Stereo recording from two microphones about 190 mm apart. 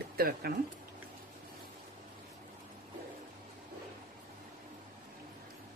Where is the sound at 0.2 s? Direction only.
50° right (ahead or behind).